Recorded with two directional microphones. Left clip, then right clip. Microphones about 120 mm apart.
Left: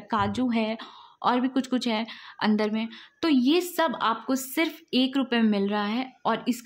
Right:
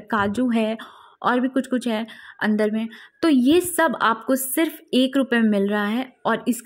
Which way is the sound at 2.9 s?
35° right (ahead or behind).